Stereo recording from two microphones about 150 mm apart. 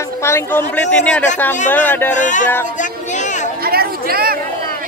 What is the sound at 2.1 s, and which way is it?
Speech, 55° left (ahead or behind).